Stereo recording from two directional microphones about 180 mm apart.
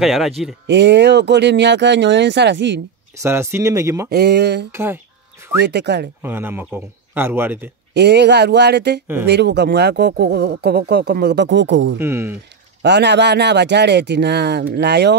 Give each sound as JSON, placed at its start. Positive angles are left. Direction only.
{"t": 0.0, "sound": "speech", "side_deg": 0}
{"t": 0.7, "sound": "speech", "side_deg": -75}
{"t": 3.2, "sound": "a man's voice", "side_deg": -15}
{"t": 4.1, "sound": "speech", "side_deg": -65}
{"t": 4.7, "sound": "livestock", "side_deg": -15}
{"t": 5.6, "sound": "speech", "side_deg": -70}
{"t": 6.2, "sound": "a man's voice", "side_deg": -10}
{"t": 7.9, "sound": "speech", "side_deg": -70}
{"t": 12.0, "sound": "a man's voice", "side_deg": -15}
{"t": 12.8, "sound": "speech", "side_deg": -70}